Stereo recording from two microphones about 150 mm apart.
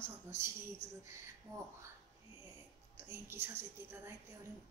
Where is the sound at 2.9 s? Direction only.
15° right (ahead or behind).